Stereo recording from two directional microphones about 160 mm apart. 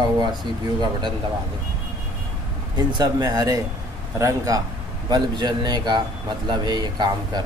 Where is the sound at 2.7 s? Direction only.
25° right (ahead or behind).